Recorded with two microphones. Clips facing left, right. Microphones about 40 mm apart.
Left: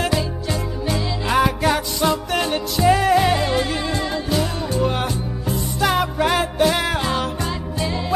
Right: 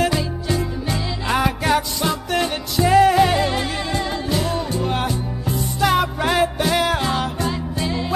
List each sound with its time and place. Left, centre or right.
0.0 s music: centre